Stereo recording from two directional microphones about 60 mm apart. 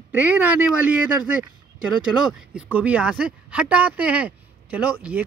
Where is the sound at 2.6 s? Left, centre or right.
Right.